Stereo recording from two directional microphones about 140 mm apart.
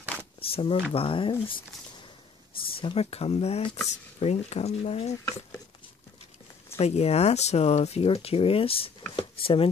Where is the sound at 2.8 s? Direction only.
45° left (ahead or behind).